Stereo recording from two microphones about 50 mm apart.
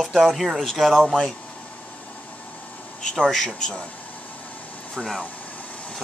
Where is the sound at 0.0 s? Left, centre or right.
Centre.